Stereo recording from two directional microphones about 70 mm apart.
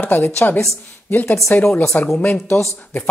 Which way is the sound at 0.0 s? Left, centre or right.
Left.